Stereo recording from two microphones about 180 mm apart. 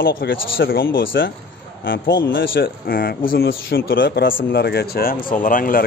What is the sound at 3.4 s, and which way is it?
Speech, 70° left (ahead or behind).